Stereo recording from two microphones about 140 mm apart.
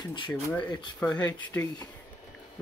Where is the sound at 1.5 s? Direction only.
20° left (ahead or behind).